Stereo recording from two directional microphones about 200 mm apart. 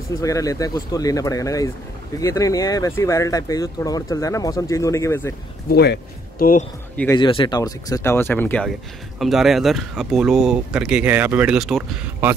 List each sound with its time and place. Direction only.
0.2 s speech: 15° left (ahead or behind)
5.7 s speech: 50° left (ahead or behind)
7.2 s speech: 25° left (ahead or behind); by 12.4 s 5° right (ahead or behind)